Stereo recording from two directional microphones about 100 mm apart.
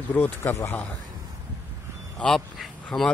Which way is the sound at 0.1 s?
20° left (ahead or behind).